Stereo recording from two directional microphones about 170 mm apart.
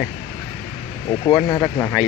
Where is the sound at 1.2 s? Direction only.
25° left (ahead or behind).